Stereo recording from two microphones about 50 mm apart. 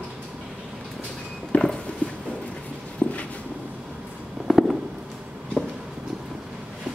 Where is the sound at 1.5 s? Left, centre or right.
Left.